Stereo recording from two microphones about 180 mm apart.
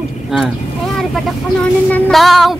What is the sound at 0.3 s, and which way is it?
Speech, 5° right (ahead or behind).